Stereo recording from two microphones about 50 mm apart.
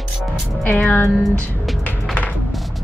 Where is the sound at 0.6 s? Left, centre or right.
Left.